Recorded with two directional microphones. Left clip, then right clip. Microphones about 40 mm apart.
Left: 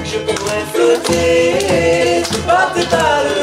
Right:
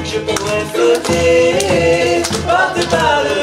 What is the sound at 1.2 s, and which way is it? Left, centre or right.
Music, centre.